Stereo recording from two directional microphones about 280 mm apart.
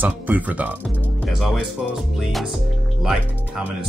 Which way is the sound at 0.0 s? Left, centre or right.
Centre.